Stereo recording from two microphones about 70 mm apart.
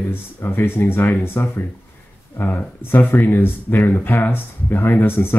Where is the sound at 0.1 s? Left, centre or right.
Left.